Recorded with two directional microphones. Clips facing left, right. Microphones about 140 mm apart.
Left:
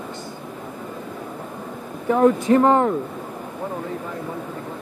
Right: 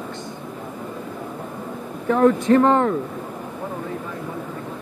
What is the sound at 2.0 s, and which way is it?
Speech, 20° left (ahead or behind).